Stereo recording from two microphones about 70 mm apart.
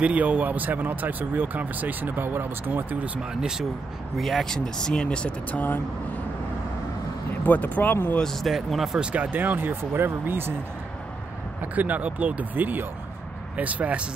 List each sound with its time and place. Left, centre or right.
0.0 s speech: right
3.3 s speech: centre; by 5.8 s left
7.4 s speech: left
8.2 s speech: centre
9.1 s speech: right
11.6 s speech: right